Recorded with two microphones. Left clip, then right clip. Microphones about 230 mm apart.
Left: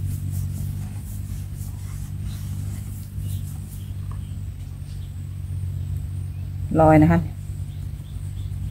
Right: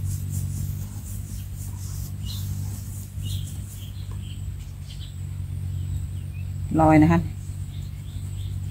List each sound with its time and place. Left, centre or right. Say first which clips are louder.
6.7 s speech: left 2 dB; left